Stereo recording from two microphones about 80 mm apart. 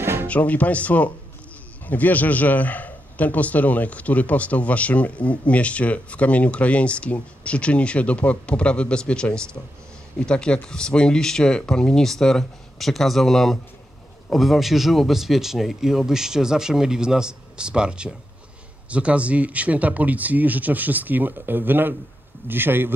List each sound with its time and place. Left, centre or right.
0.0 s music: right
0.3 s a man's voice: centre; by 22.9 s right